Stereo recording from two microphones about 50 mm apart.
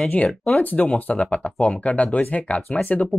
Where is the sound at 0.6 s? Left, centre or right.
Left.